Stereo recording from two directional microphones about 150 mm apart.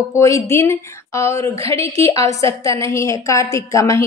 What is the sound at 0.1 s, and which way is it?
A woman's voice, 20° left (ahead or behind).